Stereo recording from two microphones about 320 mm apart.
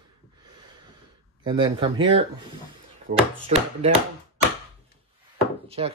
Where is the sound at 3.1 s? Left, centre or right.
Right.